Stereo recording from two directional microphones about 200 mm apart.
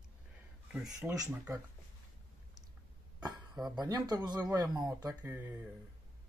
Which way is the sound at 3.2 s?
20° right (ahead or behind).